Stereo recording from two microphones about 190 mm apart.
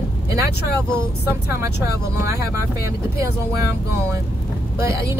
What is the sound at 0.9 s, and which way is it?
Speech, 10° right (ahead or behind).